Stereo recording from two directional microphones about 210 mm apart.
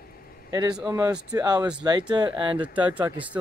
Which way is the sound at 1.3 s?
20° right (ahead or behind).